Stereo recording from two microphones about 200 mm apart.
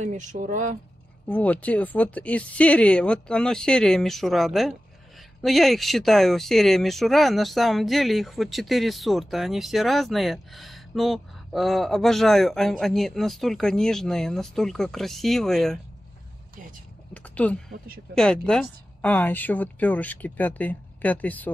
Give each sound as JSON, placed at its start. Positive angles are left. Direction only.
{"t": 0.0, "sound": "speech", "side_deg": -40}
{"t": 1.2, "sound": "speech", "side_deg": 10}
{"t": 17.1, "sound": "speech", "side_deg": 5}
{"t": 17.6, "sound": "speech", "side_deg": -50}
{"t": 18.1, "sound": "a woman's voice", "side_deg": 5}